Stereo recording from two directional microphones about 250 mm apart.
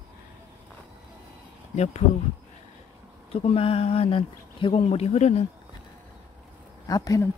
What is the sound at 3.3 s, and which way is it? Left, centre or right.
Speech, left.